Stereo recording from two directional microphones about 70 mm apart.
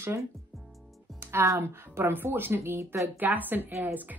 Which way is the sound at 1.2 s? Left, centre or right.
Right.